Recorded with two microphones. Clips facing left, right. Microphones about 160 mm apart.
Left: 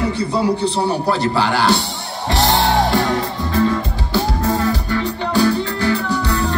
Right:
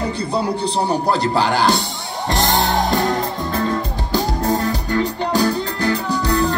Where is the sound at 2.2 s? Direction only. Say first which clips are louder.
Left 2 dB; 45° right (ahead or behind).